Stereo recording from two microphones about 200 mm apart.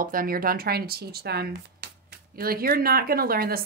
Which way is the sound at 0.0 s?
45° right (ahead or behind).